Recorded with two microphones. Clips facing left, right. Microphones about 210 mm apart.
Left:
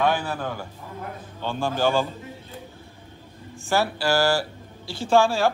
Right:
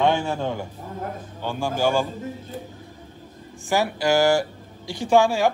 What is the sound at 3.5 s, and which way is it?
Speech, 15° right (ahead or behind).